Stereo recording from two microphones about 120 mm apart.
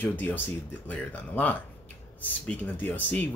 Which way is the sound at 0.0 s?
15° left (ahead or behind).